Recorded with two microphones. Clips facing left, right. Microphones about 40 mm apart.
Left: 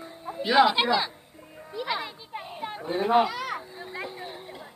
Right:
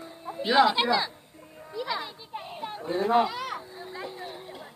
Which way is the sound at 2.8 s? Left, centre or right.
Left.